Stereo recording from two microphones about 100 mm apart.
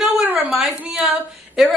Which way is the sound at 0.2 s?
15° right (ahead or behind).